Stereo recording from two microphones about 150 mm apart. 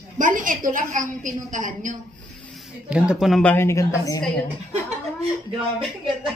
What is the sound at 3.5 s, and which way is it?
Speech, 15° left (ahead or behind).